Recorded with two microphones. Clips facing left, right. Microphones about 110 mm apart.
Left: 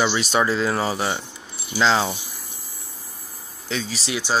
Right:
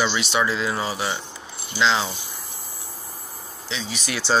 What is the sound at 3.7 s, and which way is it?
Speech, 45° left (ahead or behind).